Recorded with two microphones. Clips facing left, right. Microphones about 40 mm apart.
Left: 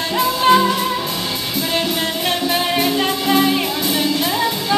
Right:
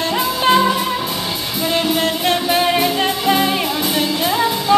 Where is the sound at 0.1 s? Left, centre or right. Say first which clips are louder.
Left 2 dB; centre.